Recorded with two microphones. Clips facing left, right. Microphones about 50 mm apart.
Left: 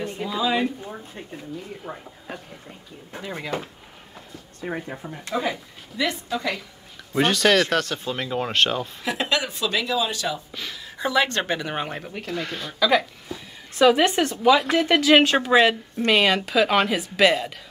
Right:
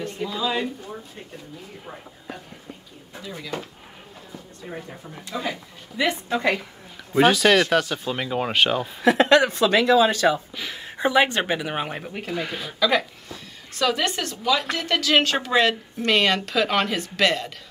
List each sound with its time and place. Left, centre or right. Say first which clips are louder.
0.0 s speech: left 1 dB; centre
3.2 s speech: left 4 dB; left
4.6 s speech: left 6 dB; left
5.3 s a woman's voice: left 3 dB; centre
6.2 s a woman's voice: right 4 dB; right
7.2 s speech: right 2 dB; centre
9.0 s a woman's voice: right 10 dB; right
10.8 s speech: right 3 dB; right; by 13.4 s centre
13.7 s speech: left 6 dB; left
14.6 s a woman's voice: left 5 dB; centre